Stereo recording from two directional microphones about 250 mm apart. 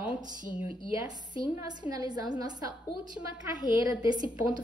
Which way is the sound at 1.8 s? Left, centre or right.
Centre.